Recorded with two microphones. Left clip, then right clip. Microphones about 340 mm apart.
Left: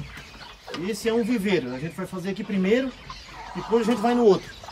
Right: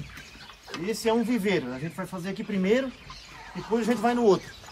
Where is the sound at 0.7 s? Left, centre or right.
Centre.